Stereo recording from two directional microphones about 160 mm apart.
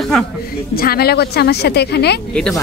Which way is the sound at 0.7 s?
75° left (ahead or behind).